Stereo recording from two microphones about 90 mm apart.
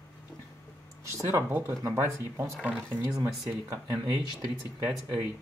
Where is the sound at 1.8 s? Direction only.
40° right (ahead or behind).